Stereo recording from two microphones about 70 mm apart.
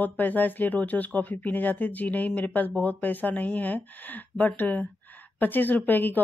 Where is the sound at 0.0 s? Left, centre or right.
Left.